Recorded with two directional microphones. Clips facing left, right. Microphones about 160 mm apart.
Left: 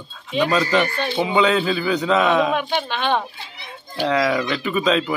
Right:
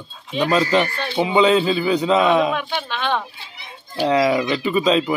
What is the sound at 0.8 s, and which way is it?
Speech, centre (ahead or behind).